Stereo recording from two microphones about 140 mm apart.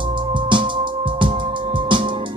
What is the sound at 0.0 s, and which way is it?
Music, 35° right (ahead or behind).